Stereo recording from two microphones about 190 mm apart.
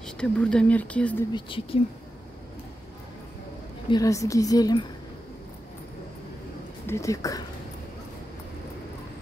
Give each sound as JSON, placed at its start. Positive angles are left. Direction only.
{"t": 0.0, "sound": "speech", "side_deg": 5}
{"t": 1.3, "sound": "a woman's voice", "side_deg": 25}
{"t": 3.9, "sound": "a woman's voice", "side_deg": 15}
{"t": 6.9, "sound": "speech", "side_deg": 15}